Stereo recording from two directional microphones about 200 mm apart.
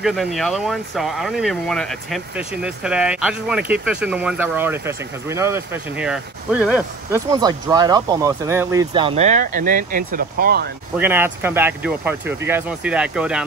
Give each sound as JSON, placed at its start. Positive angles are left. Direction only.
{"t": 0.0, "sound": "speech", "side_deg": 0}
{"t": 7.3, "sound": "speech", "side_deg": -20}
{"t": 8.9, "sound": "speech", "side_deg": -30}
{"t": 11.0, "sound": "speech", "side_deg": -10}